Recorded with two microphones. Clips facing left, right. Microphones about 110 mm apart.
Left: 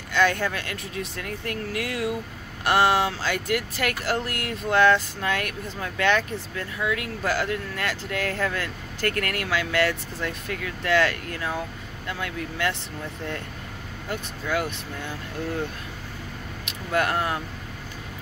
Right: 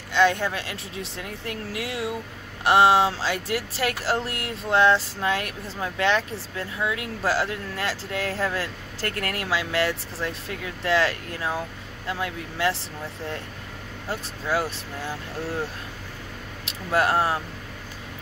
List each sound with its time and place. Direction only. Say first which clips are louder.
0.1 s speech: right 2 dB; 25° right (ahead or behind)
14.0 s speech: right 1 dB; 35° right (ahead or behind)
16.6 s speech: right 2 dB; 30° right (ahead or behind)